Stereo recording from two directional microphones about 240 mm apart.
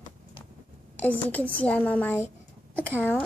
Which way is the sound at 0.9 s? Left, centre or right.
Centre.